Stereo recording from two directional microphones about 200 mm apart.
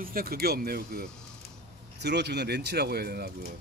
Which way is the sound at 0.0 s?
45° right (ahead or behind).